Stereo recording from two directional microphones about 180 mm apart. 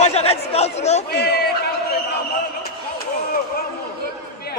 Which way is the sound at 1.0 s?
65° left (ahead or behind).